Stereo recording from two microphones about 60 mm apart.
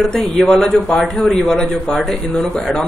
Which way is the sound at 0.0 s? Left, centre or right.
Centre.